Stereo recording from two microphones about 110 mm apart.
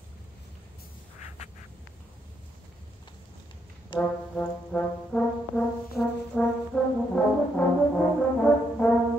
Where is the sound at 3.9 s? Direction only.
45° left (ahead or behind).